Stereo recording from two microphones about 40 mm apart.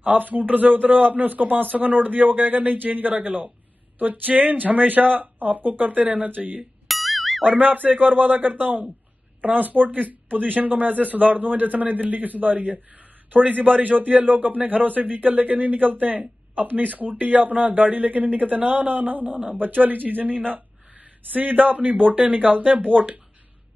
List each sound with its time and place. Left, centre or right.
0.1 s a man's voice: right
6.9 s music: centre
7.4 s a man's voice: right